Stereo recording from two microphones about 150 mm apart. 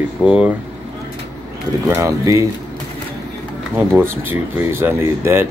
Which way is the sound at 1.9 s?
20° right (ahead or behind).